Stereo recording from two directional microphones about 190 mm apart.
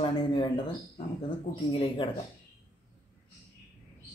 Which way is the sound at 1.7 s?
30° left (ahead or behind).